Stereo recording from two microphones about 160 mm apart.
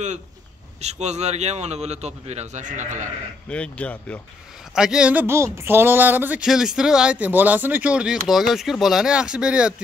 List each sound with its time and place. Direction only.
0.7 s a man's voice: 45° right (ahead or behind)
3.4 s speech: 5° left (ahead or behind)
4.7 s speech: 5° right (ahead or behind)